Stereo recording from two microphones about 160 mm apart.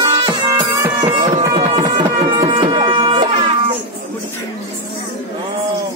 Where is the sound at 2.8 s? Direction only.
30° right (ahead or behind).